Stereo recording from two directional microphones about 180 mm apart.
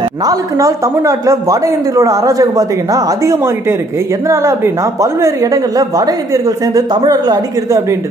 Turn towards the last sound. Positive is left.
turn(degrees=-20)  # may be behind; listen again after turning